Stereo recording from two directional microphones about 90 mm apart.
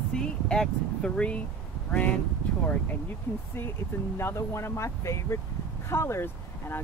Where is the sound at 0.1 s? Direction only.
10° left (ahead or behind).